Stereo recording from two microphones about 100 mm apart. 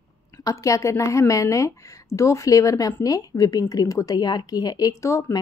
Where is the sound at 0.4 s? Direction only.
35° left (ahead or behind).